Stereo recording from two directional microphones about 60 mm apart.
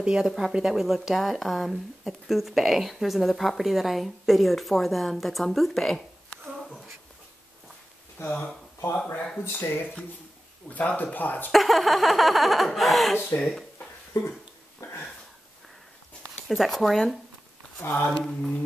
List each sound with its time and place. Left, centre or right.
0.0 s a woman's voice: centre
8.3 s speech: left
10.7 s speech: left
11.5 s a woman's voice: centre
13.4 s mantra: centre
14.1 s speech: left
14.8 s a sound: left
16.4 s a woman's voice: centre
18.2 s mantra: centre